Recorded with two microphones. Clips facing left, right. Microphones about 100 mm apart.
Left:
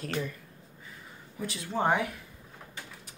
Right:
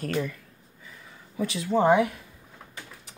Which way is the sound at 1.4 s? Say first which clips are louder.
Right 9 dB; 90° right.